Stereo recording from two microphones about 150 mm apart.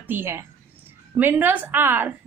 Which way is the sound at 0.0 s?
15° right (ahead or behind).